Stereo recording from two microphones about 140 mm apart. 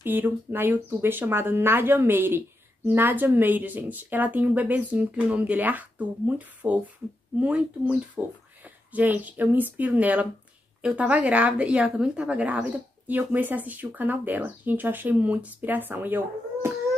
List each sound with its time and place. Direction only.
0.0 s speech: 15° right (ahead or behind)